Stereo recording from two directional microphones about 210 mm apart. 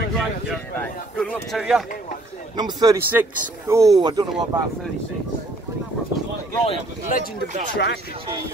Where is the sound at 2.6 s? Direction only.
20° right (ahead or behind).